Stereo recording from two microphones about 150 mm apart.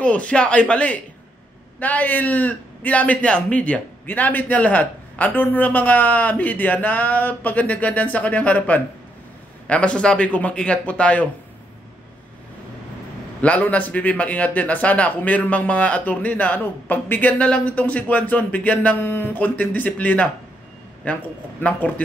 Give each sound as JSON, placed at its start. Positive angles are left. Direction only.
{"t": 0.0, "sound": "a man's voice", "side_deg": 10}
{"t": 13.4, "sound": "a man's voice", "side_deg": 10}